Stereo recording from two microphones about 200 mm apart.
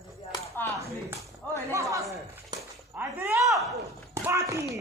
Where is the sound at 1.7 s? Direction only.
15° right (ahead or behind).